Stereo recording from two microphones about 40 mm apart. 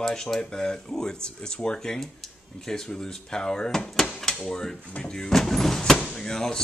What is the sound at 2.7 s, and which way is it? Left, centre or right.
Speech, centre.